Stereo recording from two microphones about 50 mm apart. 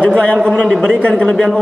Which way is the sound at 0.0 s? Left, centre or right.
Left.